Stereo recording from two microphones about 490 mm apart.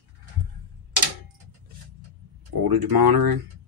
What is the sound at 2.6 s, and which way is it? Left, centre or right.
Speech, right.